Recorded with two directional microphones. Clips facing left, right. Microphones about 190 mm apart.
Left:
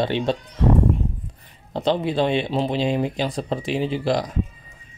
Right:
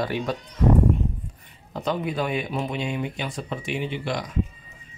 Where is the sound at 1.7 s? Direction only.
30° left (ahead or behind).